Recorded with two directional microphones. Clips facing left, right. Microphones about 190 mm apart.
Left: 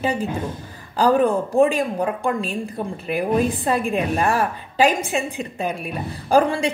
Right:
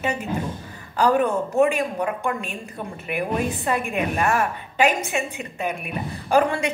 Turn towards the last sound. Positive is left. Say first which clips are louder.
# left 2 dB
turn(degrees=35)  # may be behind; listen again after turning